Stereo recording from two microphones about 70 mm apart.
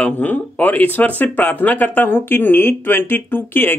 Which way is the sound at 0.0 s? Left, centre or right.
Left.